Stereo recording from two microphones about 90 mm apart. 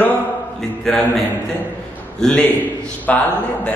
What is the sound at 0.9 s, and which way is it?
Speech, 5° left (ahead or behind).